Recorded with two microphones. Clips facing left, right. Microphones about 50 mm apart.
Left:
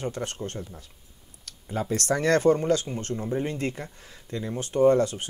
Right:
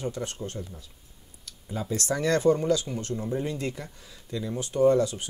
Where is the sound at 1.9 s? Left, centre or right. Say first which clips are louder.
Left 3 dB; left.